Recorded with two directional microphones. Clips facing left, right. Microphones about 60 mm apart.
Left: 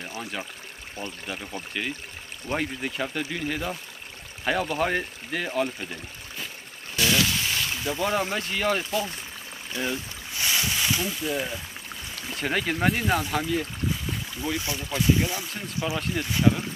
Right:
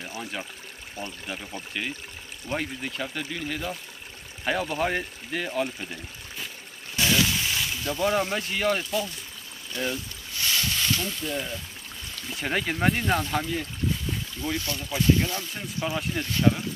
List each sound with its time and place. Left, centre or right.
0.0 s water: centre
1.2 s speech: centre
7.2 s a sound: centre
8.0 s speech: centre
9.7 s boat: centre
12.3 s speech: centre
15.8 s speech: centre
16.2 s speech: centre